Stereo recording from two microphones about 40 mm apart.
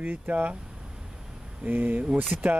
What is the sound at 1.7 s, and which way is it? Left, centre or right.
Speech, right.